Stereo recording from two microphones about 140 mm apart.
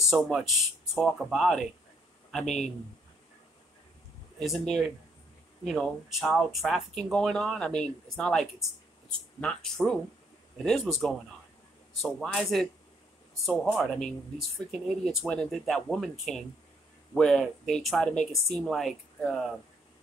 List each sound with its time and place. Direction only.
0.1 s speech: centre (ahead or behind)
2.4 s speech: 55° left (ahead or behind)
4.4 s speech: centre (ahead or behind)